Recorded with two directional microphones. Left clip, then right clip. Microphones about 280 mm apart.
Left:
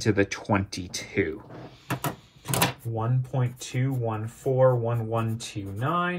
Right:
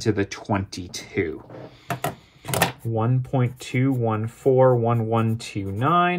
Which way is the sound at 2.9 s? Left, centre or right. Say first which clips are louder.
Right 6 dB; right.